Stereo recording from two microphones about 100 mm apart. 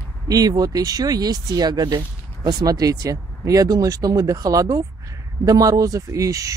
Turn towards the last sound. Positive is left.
turn(degrees=-35)  # may be behind; listen again after turning